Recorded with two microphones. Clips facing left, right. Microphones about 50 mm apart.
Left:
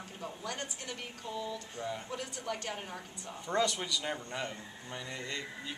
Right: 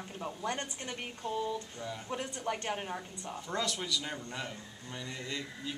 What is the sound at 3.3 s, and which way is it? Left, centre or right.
A man's voice, centre.